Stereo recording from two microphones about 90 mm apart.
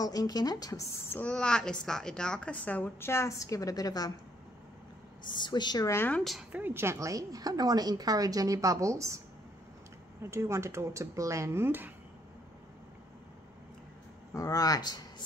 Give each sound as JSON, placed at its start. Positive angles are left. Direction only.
{"t": 0.0, "sound": "speech", "side_deg": 45}
{"t": 1.2, "sound": "a woman's voice", "side_deg": 10}
{"t": 5.3, "sound": "speech", "side_deg": 55}
{"t": 5.9, "sound": "speech", "side_deg": 25}
{"t": 6.5, "sound": "a woman's voice", "side_deg": -25}
{"t": 10.3, "sound": "a woman's voice", "side_deg": -30}
{"t": 14.3, "sound": "speech", "side_deg": 40}